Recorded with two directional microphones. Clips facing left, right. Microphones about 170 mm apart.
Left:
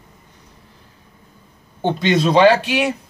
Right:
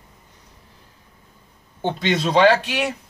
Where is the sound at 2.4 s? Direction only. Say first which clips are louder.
Left 2 dB; 30° left (ahead or behind).